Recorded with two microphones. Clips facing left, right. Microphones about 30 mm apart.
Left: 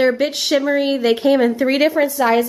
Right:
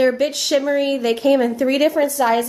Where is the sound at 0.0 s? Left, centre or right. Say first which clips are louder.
Left 1 dB; centre.